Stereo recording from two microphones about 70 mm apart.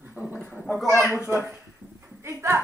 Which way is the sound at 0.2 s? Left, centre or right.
Right.